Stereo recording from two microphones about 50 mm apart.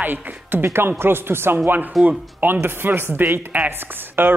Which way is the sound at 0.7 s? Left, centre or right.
Right.